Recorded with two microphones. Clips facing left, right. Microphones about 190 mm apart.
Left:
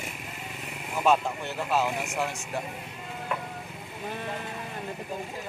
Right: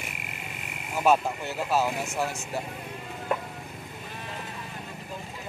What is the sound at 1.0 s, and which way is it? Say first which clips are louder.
Speech: right 1 dB; 5° right (ahead or behind).